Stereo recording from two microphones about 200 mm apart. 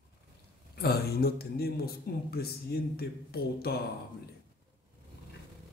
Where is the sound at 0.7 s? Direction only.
50° left (ahead or behind).